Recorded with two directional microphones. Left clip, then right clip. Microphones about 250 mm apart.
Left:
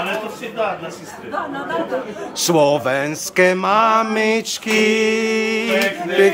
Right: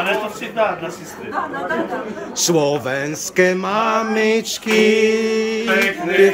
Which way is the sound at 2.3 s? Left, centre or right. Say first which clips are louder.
Left 2 dB; centre.